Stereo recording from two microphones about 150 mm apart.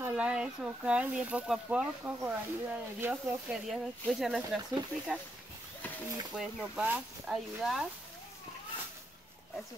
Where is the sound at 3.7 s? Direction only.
Centre (ahead or behind).